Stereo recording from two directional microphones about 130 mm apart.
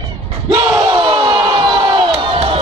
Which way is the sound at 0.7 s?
25° right (ahead or behind).